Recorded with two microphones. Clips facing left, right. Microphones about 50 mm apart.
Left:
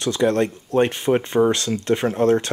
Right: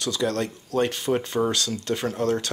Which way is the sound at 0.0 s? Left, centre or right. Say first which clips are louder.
Left 6 dB; left.